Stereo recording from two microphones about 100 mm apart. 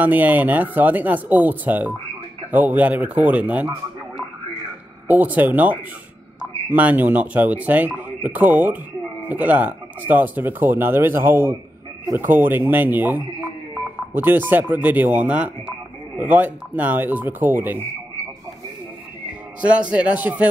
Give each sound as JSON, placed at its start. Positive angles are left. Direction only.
{"t": 0.0, "sound": "speech", "side_deg": -15}
{"t": 5.0, "sound": "speech", "side_deg": -15}
{"t": 19.6, "sound": "speech", "side_deg": -10}